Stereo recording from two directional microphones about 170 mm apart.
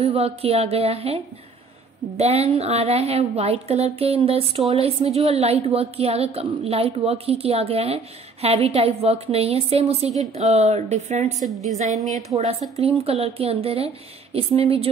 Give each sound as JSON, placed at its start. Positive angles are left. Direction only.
{"t": 0.0, "sound": "a woman's voice", "side_deg": -35}